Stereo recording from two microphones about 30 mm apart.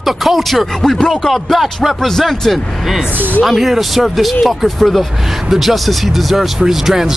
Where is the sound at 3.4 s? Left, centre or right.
Centre.